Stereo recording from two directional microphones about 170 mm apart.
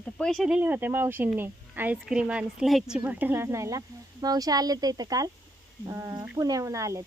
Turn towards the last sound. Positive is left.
turn(degrees=-20)  # may be behind; listen again after turning